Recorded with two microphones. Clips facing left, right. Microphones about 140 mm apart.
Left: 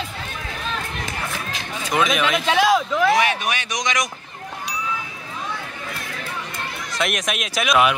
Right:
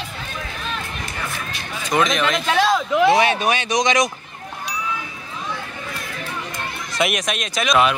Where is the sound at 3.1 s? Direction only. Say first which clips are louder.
Right 3 dB; 30° right (ahead or behind).